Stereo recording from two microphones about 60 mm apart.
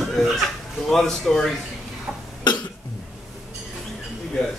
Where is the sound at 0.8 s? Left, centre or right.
Centre.